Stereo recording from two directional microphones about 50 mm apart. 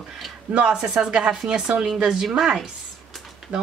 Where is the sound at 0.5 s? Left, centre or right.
Right.